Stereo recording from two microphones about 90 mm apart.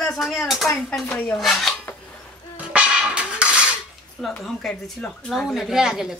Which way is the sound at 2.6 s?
10° right (ahead or behind).